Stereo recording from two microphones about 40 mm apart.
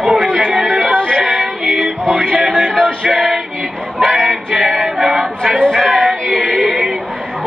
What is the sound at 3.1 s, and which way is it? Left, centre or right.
Male singing, centre.